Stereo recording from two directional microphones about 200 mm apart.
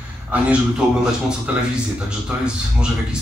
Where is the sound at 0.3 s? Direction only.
5° right (ahead or behind).